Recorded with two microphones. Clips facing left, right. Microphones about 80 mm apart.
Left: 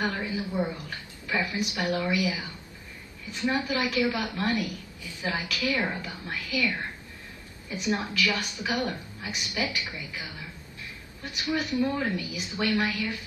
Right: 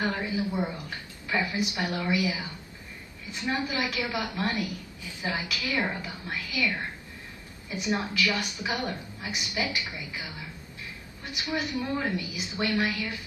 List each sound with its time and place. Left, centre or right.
0.0 s a woman's voice: right
3.5 s a woman's voice: right
7.7 s a woman's voice: right
11.4 s a woman's voice: right